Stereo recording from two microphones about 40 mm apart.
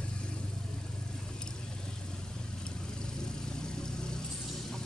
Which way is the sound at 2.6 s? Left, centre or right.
Centre.